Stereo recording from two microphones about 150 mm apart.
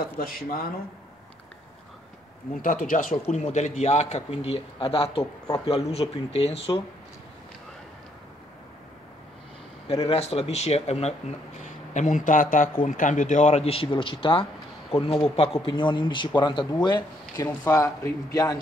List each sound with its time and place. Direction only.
0.2 s speech: 75° left (ahead or behind)
2.6 s speech: 65° left (ahead or behind)
3.3 s speech: 50° left (ahead or behind)
9.8 s a man's voice: 40° left (ahead or behind); by 18.6 s 25° left (ahead or behind)